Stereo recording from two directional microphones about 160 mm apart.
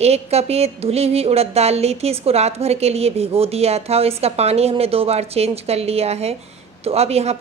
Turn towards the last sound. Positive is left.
turn(degrees=-40)  # may be behind; listen again after turning